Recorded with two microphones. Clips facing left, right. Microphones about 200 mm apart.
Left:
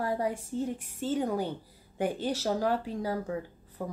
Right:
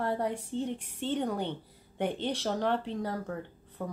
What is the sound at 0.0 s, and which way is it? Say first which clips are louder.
Speech: left 1 dB; 5° left (ahead or behind).